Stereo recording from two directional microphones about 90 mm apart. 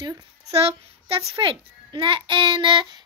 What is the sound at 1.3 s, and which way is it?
A child's voice, 70° right (ahead or behind).